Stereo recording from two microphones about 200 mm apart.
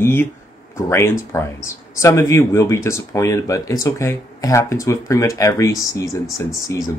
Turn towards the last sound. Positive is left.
turn(degrees=15)  # may be behind; listen again after turning